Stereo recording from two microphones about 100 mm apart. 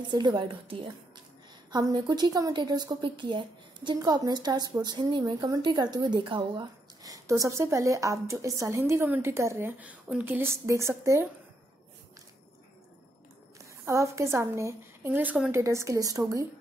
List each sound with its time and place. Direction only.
0.1 s speech: 50° right (ahead or behind)
1.7 s speech: 40° right (ahead or behind)
4.0 s a woman's voice: 40° right (ahead or behind); by 6.6 s 55° right (ahead or behind)
6.6 s speech: 35° right (ahead or behind)
13.6 s a woman's voice: 30° right (ahead or behind)